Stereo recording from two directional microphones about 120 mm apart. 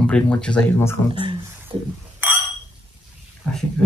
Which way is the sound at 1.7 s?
50° right (ahead or behind).